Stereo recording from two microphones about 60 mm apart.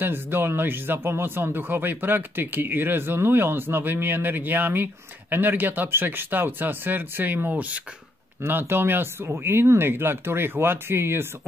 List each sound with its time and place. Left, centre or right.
0.0 s speech: right
8.4 s speech: right